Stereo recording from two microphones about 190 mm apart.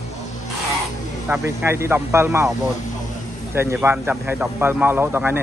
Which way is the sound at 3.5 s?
10° right (ahead or behind).